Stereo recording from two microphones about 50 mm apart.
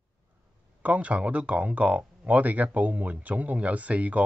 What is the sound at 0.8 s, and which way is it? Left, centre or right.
Speech, right.